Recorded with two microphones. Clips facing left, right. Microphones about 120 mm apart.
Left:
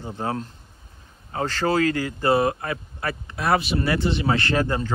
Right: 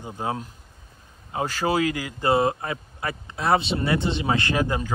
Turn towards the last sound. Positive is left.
turn(degrees=-15)  # may be behind; listen again after turning